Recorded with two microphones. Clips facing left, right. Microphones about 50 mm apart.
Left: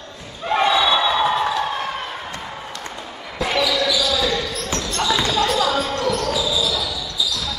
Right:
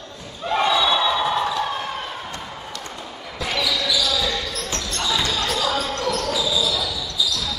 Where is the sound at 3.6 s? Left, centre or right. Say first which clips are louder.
Left 3 dB; left; by 6.7 s centre.